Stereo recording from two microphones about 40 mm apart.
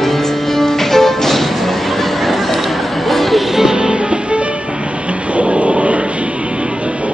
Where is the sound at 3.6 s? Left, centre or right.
Centre.